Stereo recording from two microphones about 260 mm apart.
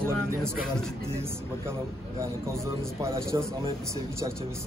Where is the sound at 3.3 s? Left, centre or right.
Centre.